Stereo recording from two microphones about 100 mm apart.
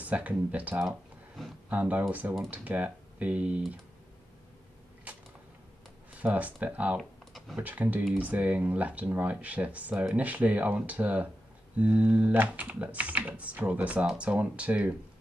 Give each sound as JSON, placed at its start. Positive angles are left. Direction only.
{"t": 0.0, "sound": "speech", "side_deg": -15}
{"t": 0.8, "sound": "a sound", "side_deg": 0}
{"t": 1.7, "sound": "speech", "side_deg": -15}
{"t": 6.1, "sound": "speech", "side_deg": -15}
{"t": 7.0, "sound": "computer keyboard", "side_deg": 0}
{"t": 7.5, "sound": "speech", "side_deg": -15}